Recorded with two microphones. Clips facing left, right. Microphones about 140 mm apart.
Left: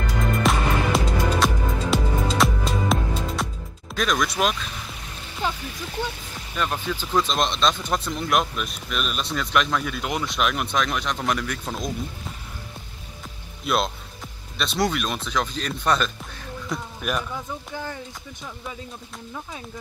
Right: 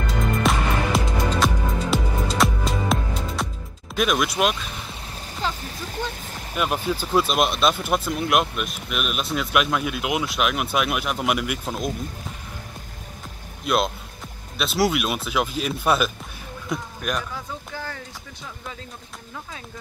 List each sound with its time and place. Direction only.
0.4 s music: centre (ahead or behind)
3.9 s speech: 5° right (ahead or behind)
5.4 s speech: 15° left (ahead or behind)
6.5 s speech: 10° right (ahead or behind)
13.7 s speech: centre (ahead or behind)
17.7 s speech: 15° left (ahead or behind)